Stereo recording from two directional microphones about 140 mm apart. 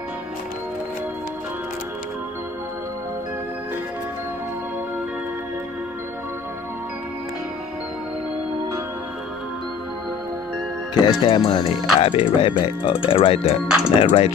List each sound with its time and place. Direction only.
11.0 s speech: 35° left (ahead or behind)